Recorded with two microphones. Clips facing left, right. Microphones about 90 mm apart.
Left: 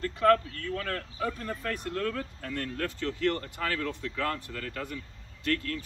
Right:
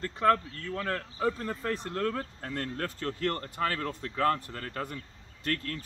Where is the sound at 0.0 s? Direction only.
30° right (ahead or behind).